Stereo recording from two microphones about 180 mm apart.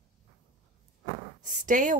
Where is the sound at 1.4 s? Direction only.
45° right (ahead or behind).